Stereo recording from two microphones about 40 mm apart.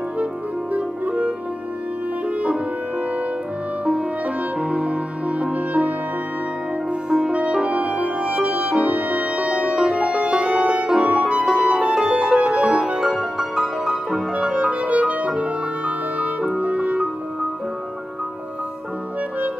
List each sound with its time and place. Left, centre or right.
1.0 s music: right
4.6 s music: right
7.1 s music: centre
7.3 s music: right
13.0 s music: centre
14.4 s music: right
16.5 s clarinet: right